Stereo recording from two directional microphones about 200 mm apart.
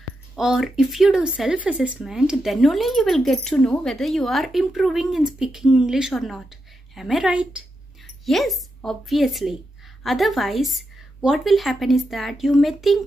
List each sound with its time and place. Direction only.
0.4 s speech: 5° right (ahead or behind)